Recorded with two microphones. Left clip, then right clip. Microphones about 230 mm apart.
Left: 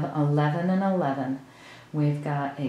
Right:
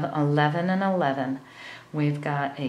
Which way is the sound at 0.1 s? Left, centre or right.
Centre.